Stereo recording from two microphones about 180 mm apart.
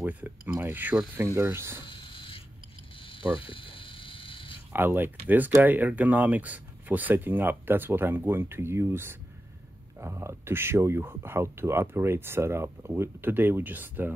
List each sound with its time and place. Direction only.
0.0 s speech: 10° right (ahead or behind)
1.9 s a sound: 25° left (ahead or behind)
4.7 s speech: 10° right (ahead or behind)